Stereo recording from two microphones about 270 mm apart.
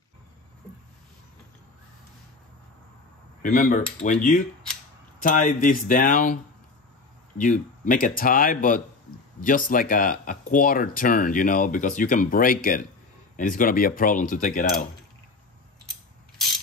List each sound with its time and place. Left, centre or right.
3.4 s speech: left
7.3 s speech: left